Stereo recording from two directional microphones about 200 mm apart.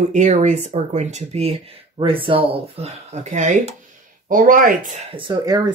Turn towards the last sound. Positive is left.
turn(degrees=-20)  # may be behind; listen again after turning